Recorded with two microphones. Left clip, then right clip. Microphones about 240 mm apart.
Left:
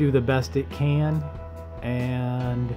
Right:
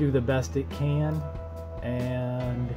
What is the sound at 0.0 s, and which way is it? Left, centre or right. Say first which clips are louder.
Speech: left 3 dB; left.